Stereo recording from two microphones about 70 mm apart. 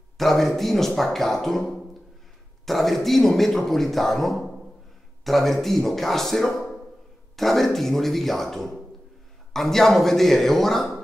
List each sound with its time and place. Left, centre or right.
0.2 s a man's voice: centre